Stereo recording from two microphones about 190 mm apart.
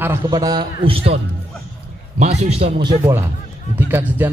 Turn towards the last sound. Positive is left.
turn(degrees=-10)  # may be behind; listen again after turning